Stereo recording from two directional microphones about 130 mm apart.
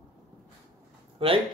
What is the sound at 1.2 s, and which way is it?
Speech, 45° right (ahead or behind).